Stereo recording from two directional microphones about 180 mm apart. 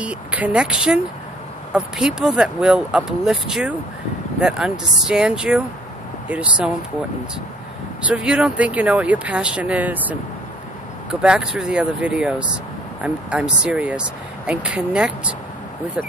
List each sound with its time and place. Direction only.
0.0 s speech: 5° right (ahead or behind)
8.1 s speech: 5° right (ahead or behind)
11.2 s speech: 5° right (ahead or behind)